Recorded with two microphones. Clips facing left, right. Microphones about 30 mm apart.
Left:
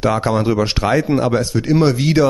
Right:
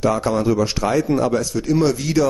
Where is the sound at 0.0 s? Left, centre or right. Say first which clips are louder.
Left 2 dB; left.